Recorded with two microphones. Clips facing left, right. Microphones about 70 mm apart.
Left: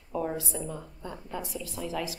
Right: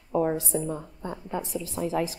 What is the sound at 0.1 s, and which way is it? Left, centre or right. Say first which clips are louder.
A woman's voice: right 7 dB; right.